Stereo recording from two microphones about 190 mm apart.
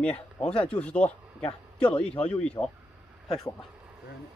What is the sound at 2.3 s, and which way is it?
Speech, 5° left (ahead or behind).